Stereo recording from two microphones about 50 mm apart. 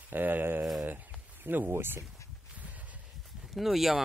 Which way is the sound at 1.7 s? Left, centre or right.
Right.